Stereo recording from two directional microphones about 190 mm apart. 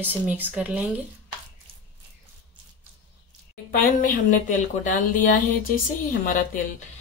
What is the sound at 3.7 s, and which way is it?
Speech, 45° left (ahead or behind).